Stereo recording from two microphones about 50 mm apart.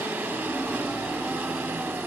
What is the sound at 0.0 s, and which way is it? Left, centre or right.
Light engine, right.